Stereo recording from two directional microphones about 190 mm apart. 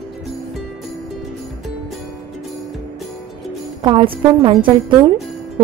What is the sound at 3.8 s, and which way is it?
Speech, 25° right (ahead or behind).